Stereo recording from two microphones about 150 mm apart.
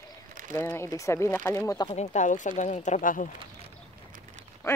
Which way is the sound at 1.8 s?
45° left (ahead or behind).